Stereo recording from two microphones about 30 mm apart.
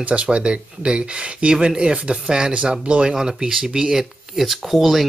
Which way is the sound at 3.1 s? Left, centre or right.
Right.